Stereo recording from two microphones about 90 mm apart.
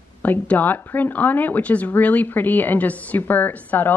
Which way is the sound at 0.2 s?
20° left (ahead or behind).